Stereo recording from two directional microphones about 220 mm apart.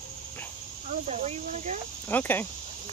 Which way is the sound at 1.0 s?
35° right (ahead or behind).